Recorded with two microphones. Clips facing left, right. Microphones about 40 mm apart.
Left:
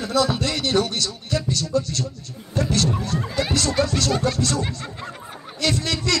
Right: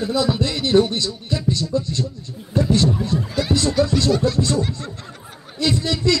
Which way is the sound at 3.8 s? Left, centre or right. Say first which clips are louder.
Right 4 dB; left.